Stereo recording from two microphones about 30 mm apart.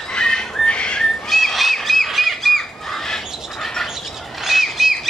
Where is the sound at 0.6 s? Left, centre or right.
Left.